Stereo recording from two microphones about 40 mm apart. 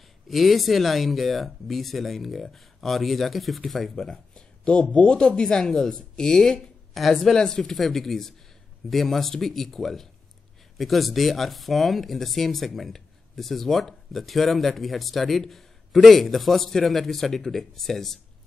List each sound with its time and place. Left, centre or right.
0.3 s a man's voice: centre
5.0 s speech: left
6.9 s speech: centre
7.3 s speech: centre
7.7 s a man's voice: centre